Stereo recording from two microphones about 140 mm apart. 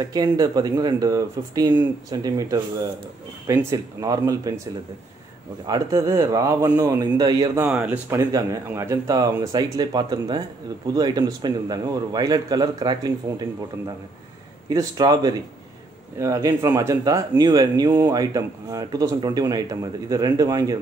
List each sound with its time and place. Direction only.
0.0 s speech: 25° right (ahead or behind)
5.7 s speech: 20° right (ahead or behind)
7.6 s speech: 10° right (ahead or behind)
8.2 s speech: 25° right (ahead or behind)
14.7 s speech: 25° right (ahead or behind)